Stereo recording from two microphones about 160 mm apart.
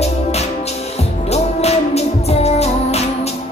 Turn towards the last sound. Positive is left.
turn(degrees=40)  # may be behind; listen again after turning